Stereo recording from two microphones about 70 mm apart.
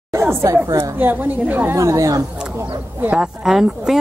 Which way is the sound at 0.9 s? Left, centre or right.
Right.